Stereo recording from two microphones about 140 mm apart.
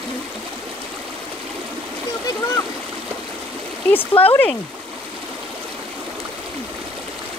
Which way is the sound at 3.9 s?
15° left (ahead or behind).